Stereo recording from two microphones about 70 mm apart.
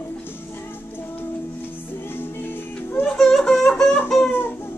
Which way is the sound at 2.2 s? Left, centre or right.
Left.